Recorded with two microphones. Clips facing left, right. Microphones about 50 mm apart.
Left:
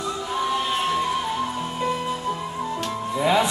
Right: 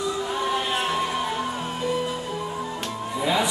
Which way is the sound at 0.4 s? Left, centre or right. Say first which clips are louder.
Left 3 dB; centre.